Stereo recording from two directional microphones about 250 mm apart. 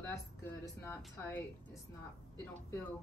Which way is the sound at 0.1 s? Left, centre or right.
Centre.